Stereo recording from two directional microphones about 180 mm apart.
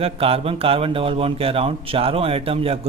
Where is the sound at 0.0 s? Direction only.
35° right (ahead or behind).